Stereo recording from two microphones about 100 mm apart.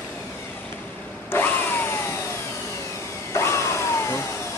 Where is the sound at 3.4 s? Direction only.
25° left (ahead or behind).